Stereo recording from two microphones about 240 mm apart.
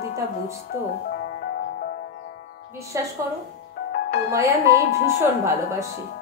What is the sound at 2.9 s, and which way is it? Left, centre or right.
Speech, centre.